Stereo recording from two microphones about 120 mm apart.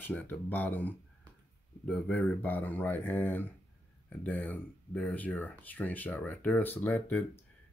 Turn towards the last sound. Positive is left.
turn(degrees=15)  # may be behind; listen again after turning